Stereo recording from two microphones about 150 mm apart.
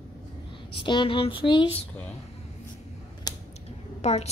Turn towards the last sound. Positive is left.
turn(degrees=45)  # may be behind; listen again after turning